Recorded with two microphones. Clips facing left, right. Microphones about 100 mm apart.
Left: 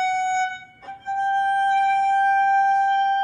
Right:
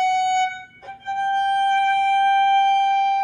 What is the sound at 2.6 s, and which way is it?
Busy signal, 65° right (ahead or behind).